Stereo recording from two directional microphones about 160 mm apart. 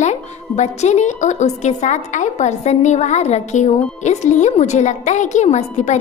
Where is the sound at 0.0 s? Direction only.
45° left (ahead or behind).